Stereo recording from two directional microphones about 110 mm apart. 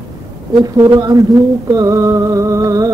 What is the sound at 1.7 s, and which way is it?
Music, 30° right (ahead or behind).